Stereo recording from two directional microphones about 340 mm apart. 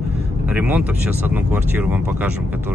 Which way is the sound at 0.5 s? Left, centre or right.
Centre.